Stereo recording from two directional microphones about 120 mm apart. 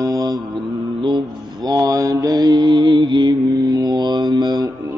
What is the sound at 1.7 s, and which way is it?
Mantra, 30° right (ahead or behind).